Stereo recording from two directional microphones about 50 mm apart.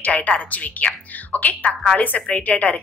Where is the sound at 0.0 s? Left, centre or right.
Left.